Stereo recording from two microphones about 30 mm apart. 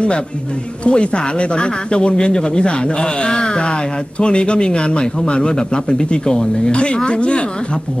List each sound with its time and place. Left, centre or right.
0.8 s a man's voice: left
6.7 s a man's voice: left